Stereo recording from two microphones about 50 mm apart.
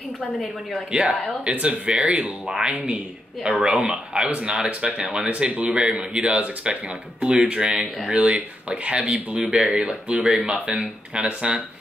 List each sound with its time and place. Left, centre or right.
0.4 s speech: centre
0.9 s speech: right